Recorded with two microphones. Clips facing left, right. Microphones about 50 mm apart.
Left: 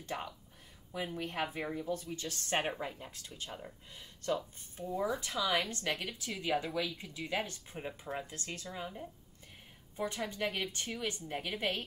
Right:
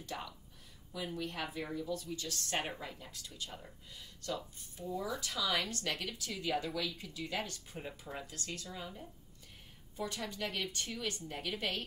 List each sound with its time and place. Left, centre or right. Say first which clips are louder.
0.0 s speech: left 3 dB; left
8.3 s speech: left 1 dB; left